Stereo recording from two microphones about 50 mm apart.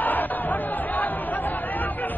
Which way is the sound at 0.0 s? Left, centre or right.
Left.